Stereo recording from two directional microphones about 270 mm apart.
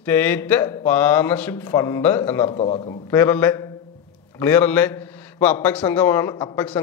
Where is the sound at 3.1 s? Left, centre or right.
Centre.